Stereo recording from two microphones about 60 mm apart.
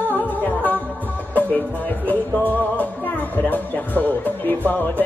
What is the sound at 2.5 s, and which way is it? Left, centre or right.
Music, left.